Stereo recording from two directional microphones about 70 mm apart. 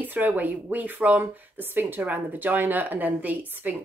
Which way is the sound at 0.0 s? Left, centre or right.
Right.